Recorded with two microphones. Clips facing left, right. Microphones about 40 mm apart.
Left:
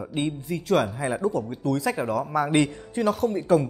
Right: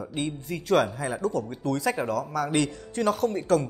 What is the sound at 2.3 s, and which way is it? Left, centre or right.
Speech, left.